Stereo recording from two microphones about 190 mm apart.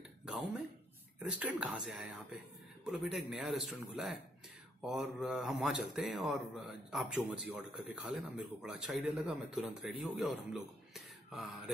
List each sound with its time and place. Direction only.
1.4 s speech: 5° right (ahead or behind)